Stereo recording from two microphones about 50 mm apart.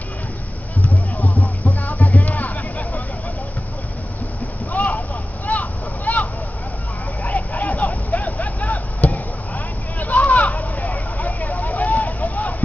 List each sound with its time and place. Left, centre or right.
1.1 s music: left
4.7 s a sound: left
7.2 s vehicle: left